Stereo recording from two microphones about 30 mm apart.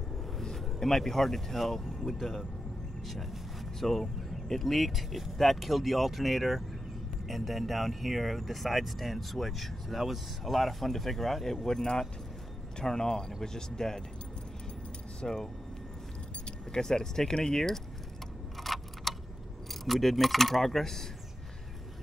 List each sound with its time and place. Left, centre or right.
0.4 s speech: centre
3.8 s speech: centre
15.2 s speech: centre
16.7 s speech: left
18.6 s a sound: centre
19.7 s speech: centre